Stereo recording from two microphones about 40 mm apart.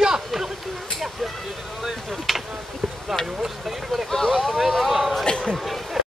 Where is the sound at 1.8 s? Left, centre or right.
Centre.